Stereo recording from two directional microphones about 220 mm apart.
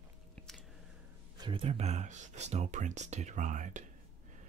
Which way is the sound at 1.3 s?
20° right (ahead or behind).